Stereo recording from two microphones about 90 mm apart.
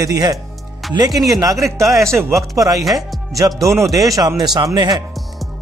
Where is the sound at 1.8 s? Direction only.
35° right (ahead or behind); by 5.0 s 55° right (ahead or behind).